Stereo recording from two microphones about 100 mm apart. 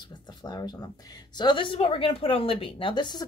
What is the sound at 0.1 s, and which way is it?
Speech, 50° left (ahead or behind).